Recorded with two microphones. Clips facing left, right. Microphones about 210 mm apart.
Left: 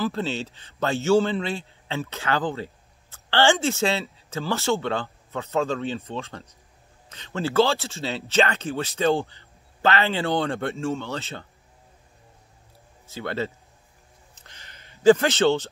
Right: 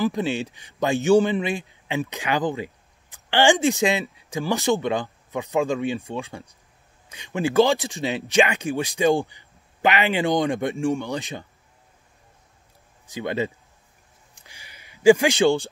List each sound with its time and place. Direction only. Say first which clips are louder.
0.0 s a man's voice: right 3 dB; 15° right (ahead or behind)
13.0 s speech: right 3 dB; 15° right (ahead or behind)
14.3 s a sound: right 1 dB; 10° right (ahead or behind)